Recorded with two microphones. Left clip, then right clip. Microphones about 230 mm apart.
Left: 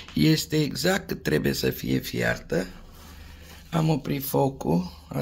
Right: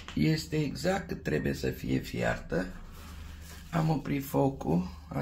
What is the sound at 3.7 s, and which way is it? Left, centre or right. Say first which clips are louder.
Speech: left 5 dB; left.